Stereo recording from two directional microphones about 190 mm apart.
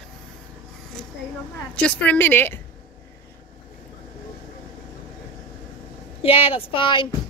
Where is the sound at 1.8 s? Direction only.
5° left (ahead or behind).